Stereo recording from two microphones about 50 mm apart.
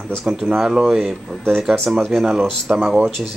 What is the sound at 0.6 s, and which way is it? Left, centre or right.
Speech, centre.